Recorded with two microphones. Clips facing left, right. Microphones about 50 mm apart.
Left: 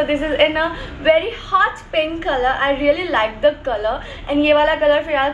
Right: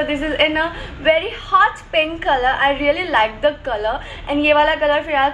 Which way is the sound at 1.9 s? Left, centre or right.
Right.